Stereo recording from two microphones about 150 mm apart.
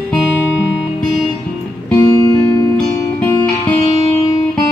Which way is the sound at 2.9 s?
15° left (ahead or behind).